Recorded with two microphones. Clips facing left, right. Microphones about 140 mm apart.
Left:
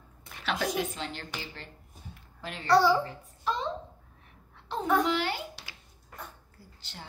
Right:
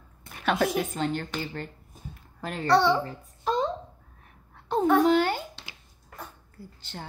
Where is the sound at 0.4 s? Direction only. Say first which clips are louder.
Right 5 dB; 50° right (ahead or behind).